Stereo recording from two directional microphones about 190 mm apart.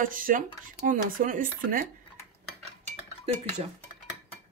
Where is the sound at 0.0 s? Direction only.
45° right (ahead or behind).